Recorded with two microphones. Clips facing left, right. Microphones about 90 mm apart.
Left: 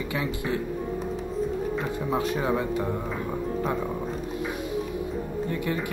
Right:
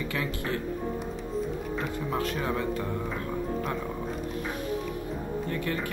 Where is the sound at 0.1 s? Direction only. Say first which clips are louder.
Left 3 dB; 20° left (ahead or behind).